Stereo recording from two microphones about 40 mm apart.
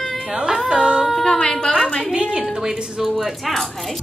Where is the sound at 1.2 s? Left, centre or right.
Left.